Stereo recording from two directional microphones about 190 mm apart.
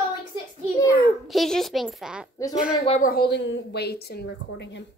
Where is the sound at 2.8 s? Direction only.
35° left (ahead or behind).